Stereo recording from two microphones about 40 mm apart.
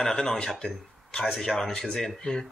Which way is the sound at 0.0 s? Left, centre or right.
Centre.